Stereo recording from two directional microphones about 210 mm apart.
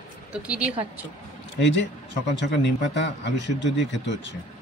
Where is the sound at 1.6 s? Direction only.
60° left (ahead or behind).